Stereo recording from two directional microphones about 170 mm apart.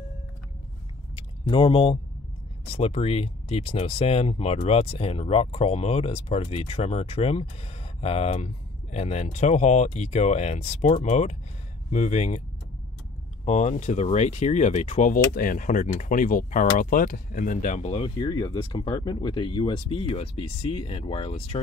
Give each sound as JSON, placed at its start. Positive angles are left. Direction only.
{"t": 1.1, "sound": "a sound", "side_deg": 35}
{"t": 2.6, "sound": "speech", "side_deg": 35}
{"t": 13.5, "sound": "speech", "side_deg": 45}